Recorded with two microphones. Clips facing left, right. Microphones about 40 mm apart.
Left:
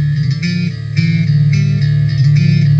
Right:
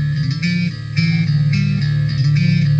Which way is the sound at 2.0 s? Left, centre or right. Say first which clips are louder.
Left 4 dB; left.